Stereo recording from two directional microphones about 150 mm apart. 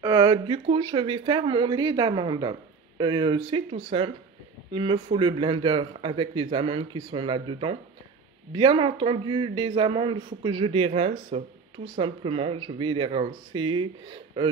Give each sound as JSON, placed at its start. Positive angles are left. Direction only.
{"t": 0.0, "sound": "speech", "side_deg": -25}